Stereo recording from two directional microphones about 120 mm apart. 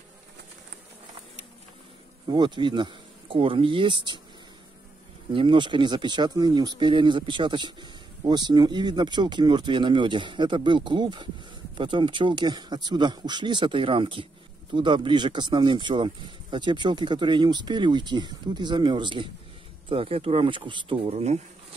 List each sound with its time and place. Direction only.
2.2 s speech: 40° right (ahead or behind)
5.3 s speech: 45° right (ahead or behind)
21.1 s speech: 65° right (ahead or behind)